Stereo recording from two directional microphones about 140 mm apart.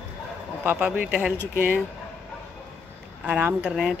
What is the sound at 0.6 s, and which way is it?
Speech, 10° right (ahead or behind).